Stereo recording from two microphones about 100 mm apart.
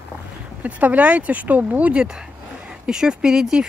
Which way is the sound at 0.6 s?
15° right (ahead or behind).